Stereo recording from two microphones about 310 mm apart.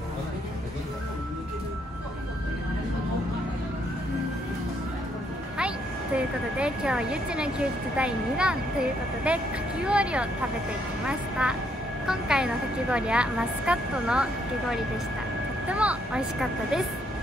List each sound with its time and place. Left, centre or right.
6.1 s speech: centre
15.7 s speech: centre